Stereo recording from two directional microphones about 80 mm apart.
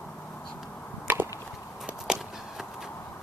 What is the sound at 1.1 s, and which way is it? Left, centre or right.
Chop, right.